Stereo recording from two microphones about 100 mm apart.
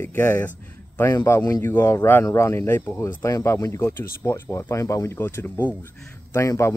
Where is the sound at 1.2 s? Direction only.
35° left (ahead or behind).